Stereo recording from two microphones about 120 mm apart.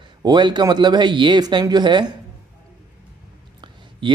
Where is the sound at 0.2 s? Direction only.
40° right (ahead or behind).